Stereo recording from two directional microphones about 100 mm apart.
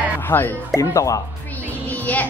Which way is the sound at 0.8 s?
35° left (ahead or behind).